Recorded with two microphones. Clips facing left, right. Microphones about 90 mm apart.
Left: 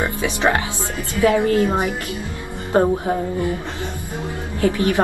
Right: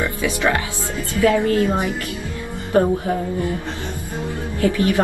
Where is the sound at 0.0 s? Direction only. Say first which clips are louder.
Left 1 dB; 25° left (ahead or behind).